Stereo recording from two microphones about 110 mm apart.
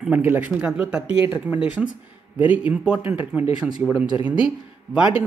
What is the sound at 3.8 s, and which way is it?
Speech, 5° left (ahead or behind).